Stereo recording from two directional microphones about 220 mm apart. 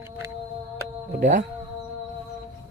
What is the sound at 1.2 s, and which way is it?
Speech, 35° right (ahead or behind).